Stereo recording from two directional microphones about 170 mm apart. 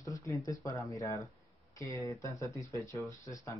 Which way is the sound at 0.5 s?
20° left (ahead or behind).